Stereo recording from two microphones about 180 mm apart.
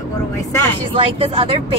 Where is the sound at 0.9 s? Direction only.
30° right (ahead or behind).